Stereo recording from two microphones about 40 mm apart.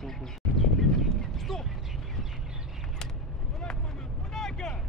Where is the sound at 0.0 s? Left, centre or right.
Centre.